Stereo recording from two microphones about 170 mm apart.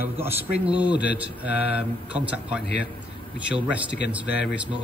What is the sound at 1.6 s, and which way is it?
Speech, 80° left.